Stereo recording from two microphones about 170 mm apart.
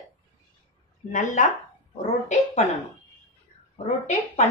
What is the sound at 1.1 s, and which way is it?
Speech, 50° left (ahead or behind).